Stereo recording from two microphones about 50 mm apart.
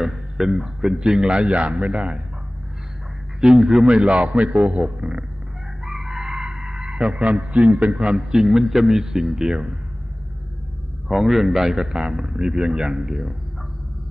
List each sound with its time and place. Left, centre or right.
0.0 s a man's voice: centre
3.3 s a man's voice: centre
5.9 s speech: centre
11.1 s a man's voice: centre